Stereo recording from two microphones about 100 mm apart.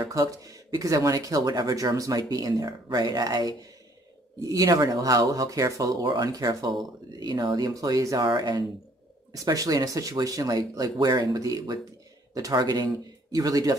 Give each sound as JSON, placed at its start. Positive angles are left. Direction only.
{"t": 0.0, "sound": "speech", "side_deg": -35}
{"t": 8.3, "sound": "speech", "side_deg": -45}
{"t": 9.3, "sound": "speech", "side_deg": -35}